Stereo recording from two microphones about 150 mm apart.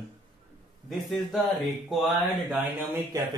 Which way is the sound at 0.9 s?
Centre (ahead or behind).